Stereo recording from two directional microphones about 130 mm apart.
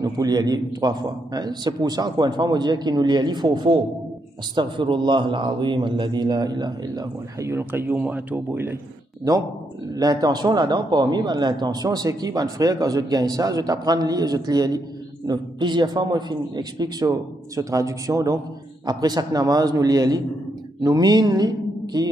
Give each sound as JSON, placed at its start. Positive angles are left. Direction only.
{"t": 0.0, "sound": "a man's voice", "side_deg": -30}
{"t": 9.3, "sound": "a man's voice", "side_deg": -30}